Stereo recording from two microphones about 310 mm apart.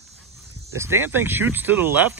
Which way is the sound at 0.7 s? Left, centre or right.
Centre.